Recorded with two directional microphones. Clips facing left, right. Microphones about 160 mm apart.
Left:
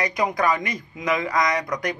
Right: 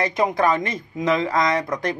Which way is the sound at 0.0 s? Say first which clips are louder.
Right 3 dB; 25° right (ahead or behind).